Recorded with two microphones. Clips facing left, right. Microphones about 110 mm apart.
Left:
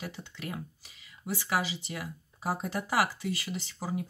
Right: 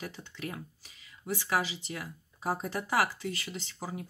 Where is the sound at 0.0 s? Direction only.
15° left (ahead or behind).